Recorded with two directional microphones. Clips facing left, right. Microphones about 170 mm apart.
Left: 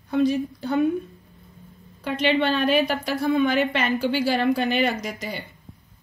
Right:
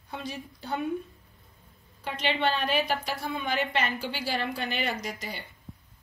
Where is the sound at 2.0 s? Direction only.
65° left (ahead or behind).